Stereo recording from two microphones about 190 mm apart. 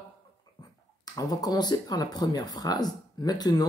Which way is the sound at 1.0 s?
20° left (ahead or behind).